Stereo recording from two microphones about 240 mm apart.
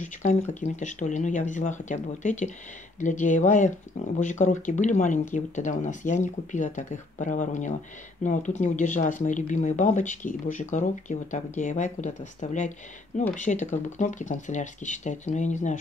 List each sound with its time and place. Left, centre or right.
0.0 s speech: left